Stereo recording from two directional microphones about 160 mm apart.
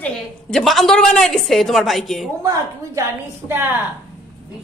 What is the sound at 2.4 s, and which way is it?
A woman's voice, 20° right (ahead or behind).